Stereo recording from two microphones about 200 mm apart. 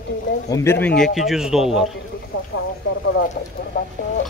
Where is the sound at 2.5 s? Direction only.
65° left (ahead or behind).